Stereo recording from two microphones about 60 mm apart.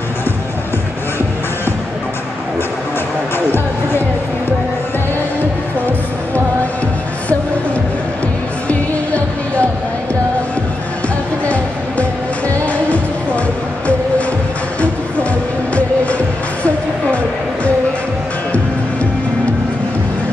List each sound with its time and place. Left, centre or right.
3.3 s music: left
8.6 s music: left
11.4 s music: left